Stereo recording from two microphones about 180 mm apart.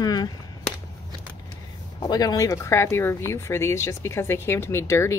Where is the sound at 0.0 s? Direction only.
20° left (ahead or behind).